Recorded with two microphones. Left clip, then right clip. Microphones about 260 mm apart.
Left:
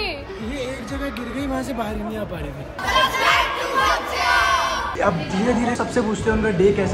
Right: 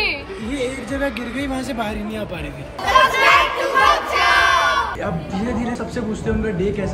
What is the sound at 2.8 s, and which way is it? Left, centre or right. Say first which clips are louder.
Children playing: right 5 dB; centre.